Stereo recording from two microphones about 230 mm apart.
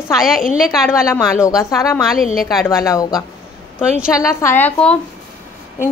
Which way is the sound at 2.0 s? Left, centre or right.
Centre.